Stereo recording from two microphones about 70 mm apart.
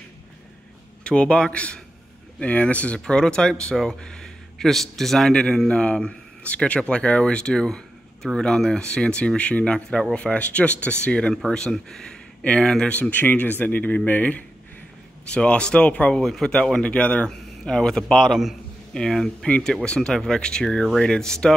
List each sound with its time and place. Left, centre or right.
1.0 s speech: centre
13.1 s speech: left
16.2 s speech: centre
17.3 s a man's voice: centre
18.9 s speech: centre